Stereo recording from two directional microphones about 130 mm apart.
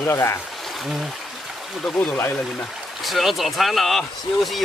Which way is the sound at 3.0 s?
Centre (ahead or behind).